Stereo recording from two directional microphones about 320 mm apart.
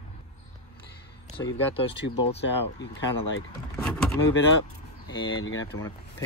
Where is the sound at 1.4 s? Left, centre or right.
Centre.